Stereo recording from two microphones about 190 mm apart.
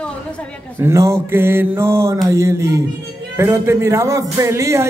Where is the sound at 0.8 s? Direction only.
15° right (ahead or behind).